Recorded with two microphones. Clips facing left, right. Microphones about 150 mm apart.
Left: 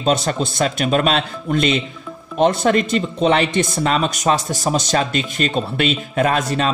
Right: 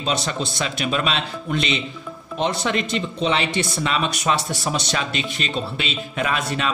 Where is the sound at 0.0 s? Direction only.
50° left (ahead or behind).